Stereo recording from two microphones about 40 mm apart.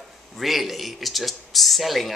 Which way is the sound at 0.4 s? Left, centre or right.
Centre.